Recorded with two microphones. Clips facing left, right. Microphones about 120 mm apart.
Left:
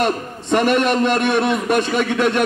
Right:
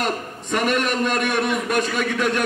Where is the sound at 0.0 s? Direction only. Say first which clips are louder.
Left 5 dB; 30° left (ahead or behind).